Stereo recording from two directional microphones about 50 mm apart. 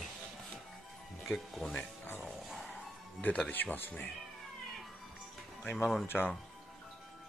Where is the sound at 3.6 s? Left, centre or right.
Left.